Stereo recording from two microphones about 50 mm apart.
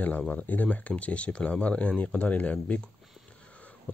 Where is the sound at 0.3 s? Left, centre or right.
Left.